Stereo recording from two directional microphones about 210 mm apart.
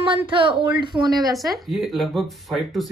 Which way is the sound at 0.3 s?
25° right (ahead or behind).